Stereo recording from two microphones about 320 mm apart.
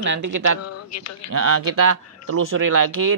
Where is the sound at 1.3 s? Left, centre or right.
Right.